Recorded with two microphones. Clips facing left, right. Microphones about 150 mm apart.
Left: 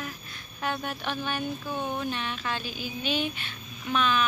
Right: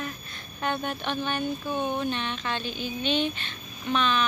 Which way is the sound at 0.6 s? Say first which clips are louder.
Right 2 dB; 5° left (ahead or behind).